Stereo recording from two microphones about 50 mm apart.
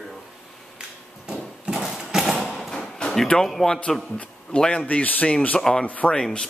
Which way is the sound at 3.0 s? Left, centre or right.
Centre.